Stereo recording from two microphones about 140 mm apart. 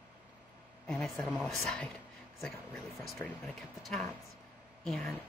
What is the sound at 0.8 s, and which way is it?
Speech, 5° left (ahead or behind).